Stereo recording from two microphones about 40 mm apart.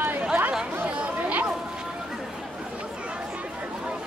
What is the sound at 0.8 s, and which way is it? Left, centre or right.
Chatter, right.